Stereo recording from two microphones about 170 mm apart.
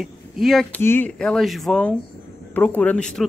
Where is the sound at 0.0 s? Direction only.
Centre (ahead or behind).